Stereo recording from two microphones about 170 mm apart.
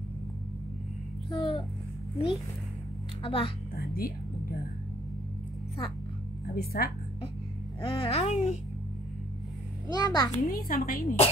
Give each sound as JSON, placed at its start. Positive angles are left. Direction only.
{"t": 1.3, "sound": "speech", "side_deg": 30}
{"t": 3.2, "sound": "speech", "side_deg": 30}
{"t": 3.7, "sound": "speech", "side_deg": 60}
{"t": 6.5, "sound": "a woman's voice", "side_deg": 65}
{"t": 7.8, "sound": "speech", "side_deg": 30}
{"t": 9.8, "sound": "a child's voice", "side_deg": 25}
{"t": 10.3, "sound": "a woman's voice", "side_deg": 55}